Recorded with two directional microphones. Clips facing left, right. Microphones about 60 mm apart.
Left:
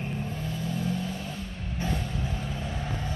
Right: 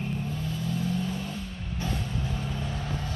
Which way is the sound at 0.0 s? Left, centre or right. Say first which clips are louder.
Right 1 dB; centre.